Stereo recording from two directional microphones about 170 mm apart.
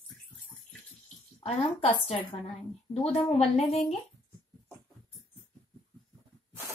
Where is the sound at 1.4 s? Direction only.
35° left (ahead or behind).